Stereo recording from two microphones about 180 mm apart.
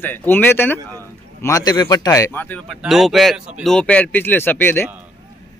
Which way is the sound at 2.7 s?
Centre (ahead or behind).